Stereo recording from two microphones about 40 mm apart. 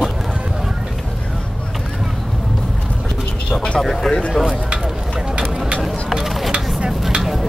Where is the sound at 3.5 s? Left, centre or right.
Left.